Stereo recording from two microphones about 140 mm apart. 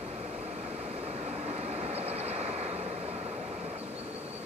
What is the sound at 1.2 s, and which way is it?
Vehicle, 45° right (ahead or behind).